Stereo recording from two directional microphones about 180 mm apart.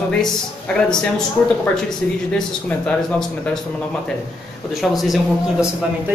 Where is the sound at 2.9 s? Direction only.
5° left (ahead or behind).